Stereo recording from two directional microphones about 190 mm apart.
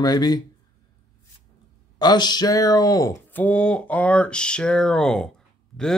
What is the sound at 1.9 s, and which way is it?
Speech, 20° left (ahead or behind).